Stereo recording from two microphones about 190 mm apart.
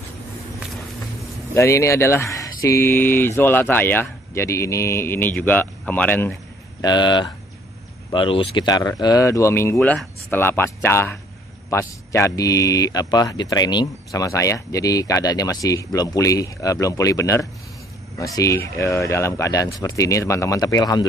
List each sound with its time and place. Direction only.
1.5 s speech: 15° left (ahead or behind)
6.8 s speech: 25° left (ahead or behind)